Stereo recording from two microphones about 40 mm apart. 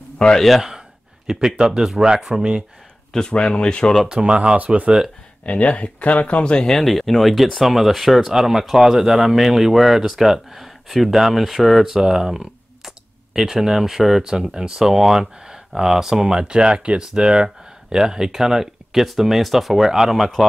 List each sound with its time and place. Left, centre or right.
0.4 s speech: centre
0.7 s a sound: centre
2.0 s speech: centre
3.1 s speech: centre
4.1 s speech: right
5.4 s speech: left
6.6 s speech: centre